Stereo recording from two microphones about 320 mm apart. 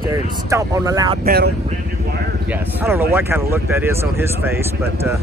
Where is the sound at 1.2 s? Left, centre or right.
Right.